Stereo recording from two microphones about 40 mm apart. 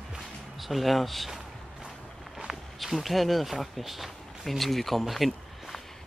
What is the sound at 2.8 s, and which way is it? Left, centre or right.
Speech, centre.